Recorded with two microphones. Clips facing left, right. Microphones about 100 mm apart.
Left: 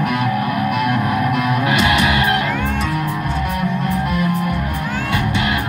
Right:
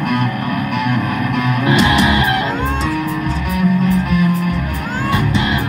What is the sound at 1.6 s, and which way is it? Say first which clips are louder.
Music: right 5 dB; 25° right (ahead or behind).